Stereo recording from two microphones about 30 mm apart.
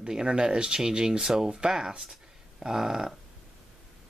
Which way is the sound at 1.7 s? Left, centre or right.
Centre.